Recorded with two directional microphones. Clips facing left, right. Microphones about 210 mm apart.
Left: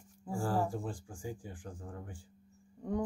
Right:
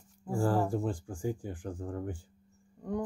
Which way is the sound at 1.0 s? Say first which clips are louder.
Right 8 dB; 55° right (ahead or behind).